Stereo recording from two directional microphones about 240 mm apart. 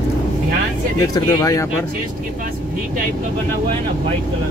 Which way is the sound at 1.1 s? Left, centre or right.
Centre.